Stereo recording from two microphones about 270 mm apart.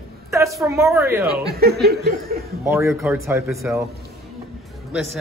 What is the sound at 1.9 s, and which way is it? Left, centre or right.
Snicker, right.